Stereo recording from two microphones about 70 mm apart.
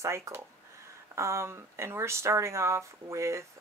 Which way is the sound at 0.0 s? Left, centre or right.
Right.